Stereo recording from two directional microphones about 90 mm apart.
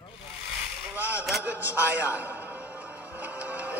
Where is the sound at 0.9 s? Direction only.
15° right (ahead or behind).